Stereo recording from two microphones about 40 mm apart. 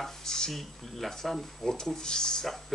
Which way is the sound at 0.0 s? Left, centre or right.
Centre.